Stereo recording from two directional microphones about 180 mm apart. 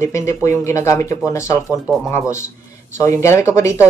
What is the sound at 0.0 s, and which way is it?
Speech, 15° left (ahead or behind).